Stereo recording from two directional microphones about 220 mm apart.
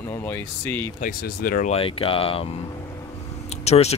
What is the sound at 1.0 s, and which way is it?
Speech, 40° left (ahead or behind).